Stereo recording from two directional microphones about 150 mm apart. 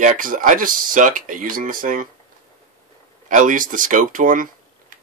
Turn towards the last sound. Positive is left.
turn(degrees=-65)  # may be behind; listen again after turning